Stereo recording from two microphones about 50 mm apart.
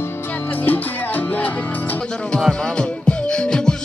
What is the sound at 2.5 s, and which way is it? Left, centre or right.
Music, centre.